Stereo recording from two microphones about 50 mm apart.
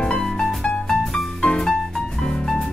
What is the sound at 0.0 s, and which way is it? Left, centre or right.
Music, centre.